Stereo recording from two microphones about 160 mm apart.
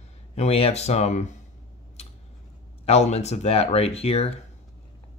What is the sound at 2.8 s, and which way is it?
Speech, 40° left (ahead or behind).